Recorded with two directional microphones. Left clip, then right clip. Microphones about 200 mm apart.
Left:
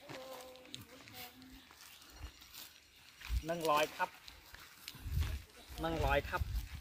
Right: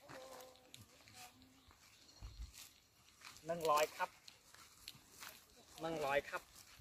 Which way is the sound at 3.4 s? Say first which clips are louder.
Left 3 dB; 10° right (ahead or behind).